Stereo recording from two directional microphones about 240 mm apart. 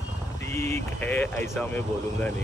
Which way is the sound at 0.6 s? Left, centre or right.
Centre.